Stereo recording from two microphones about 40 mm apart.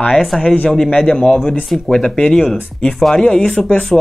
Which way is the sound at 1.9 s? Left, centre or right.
Centre.